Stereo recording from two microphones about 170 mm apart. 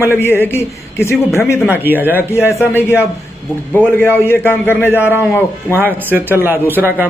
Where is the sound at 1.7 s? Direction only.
10° right (ahead or behind).